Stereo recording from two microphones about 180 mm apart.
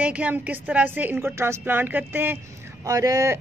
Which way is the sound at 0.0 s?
5° right (ahead or behind).